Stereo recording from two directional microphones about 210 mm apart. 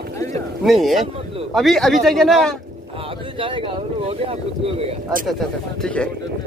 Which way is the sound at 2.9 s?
25° right (ahead or behind).